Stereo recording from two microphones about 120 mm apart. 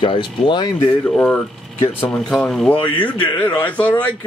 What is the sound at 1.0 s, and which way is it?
Speech, 15° left (ahead or behind).